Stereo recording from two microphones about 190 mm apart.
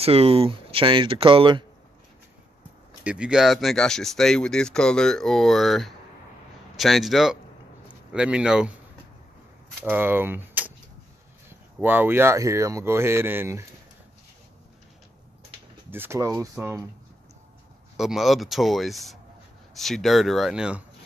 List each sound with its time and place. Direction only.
0.0 s speech: 30° right (ahead or behind)
3.0 s speech: 5° right (ahead or behind)
9.8 s speech: 10° right (ahead or behind)
15.9 s speech: 15° right (ahead or behind)
17.9 s speech: centre (ahead or behind)